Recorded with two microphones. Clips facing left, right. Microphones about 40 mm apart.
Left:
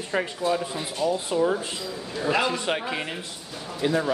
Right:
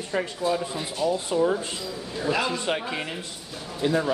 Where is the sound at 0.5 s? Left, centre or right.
Centre.